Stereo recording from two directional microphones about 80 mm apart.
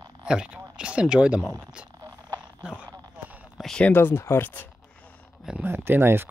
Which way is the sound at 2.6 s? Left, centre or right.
Centre.